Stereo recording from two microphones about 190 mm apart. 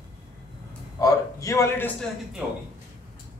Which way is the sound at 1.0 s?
15° left (ahead or behind).